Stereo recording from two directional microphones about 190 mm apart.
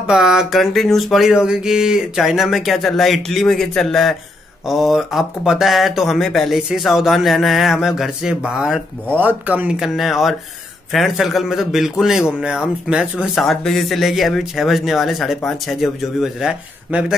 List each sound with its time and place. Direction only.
0.0 s speech: 5° right (ahead or behind)